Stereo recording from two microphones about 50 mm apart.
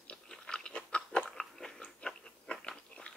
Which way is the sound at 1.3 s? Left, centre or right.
Centre.